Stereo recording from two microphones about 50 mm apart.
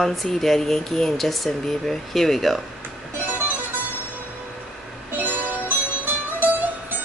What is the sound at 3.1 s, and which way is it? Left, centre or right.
Music, right.